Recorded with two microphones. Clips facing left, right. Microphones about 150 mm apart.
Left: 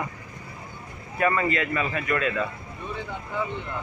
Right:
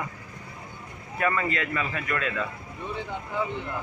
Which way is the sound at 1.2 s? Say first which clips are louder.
Left 3 dB; 10° left (ahead or behind).